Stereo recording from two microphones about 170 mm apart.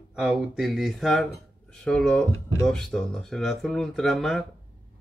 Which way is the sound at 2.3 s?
15° left (ahead or behind).